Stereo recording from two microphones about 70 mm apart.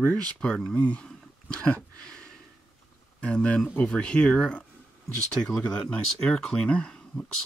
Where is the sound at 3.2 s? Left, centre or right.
Centre.